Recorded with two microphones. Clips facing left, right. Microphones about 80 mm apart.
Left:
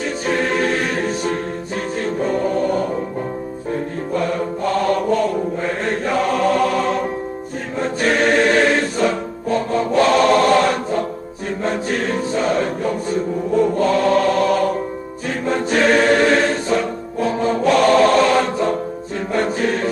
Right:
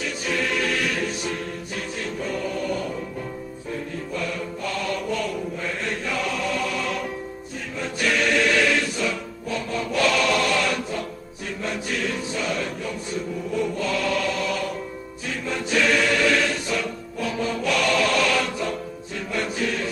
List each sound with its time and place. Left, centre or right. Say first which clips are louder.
0.0 s music: left 6 dB; left
2.0 s choir: left 9 dB; left
3.7 s music: left 8 dB; left
11.6 s chant: left 6 dB; left
15.2 s choir: left 8 dB; left
19.3 s music: left 7 dB; left